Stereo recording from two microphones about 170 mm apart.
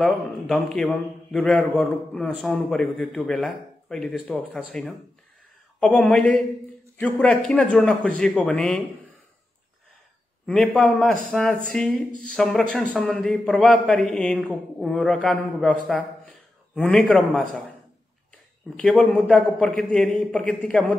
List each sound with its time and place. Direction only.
0.0 s a man's voice: centre (ahead or behind)
10.4 s a man's voice: 5° left (ahead or behind)
18.8 s a man's voice: 5° left (ahead or behind)